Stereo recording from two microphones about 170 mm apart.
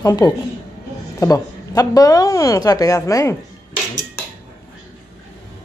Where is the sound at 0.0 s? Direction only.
25° left (ahead or behind).